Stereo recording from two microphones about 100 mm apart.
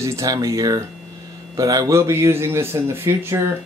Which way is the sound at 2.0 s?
25° right (ahead or behind).